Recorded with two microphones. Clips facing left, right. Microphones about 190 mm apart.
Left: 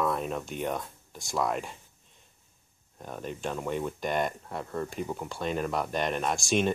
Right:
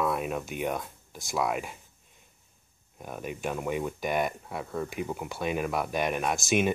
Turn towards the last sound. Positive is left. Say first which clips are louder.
# right 1 dB
turn(degrees=-5)  # may be behind; listen again after turning